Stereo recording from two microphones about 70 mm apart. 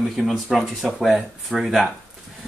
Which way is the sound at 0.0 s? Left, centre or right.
Centre.